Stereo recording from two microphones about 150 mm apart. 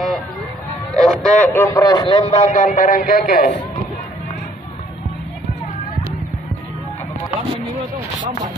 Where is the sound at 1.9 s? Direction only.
35° left (ahead or behind); by 3.5 s 80° left.